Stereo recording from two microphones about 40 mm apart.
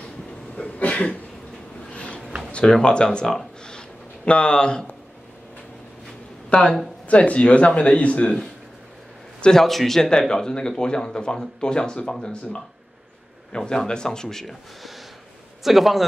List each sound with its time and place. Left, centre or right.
0.7 s cough: left
2.8 s speech: left
3.6 s a sound: left
6.5 s a man's voice: left
9.4 s a man's voice: centre
14.8 s snort: centre
15.6 s a man's voice: centre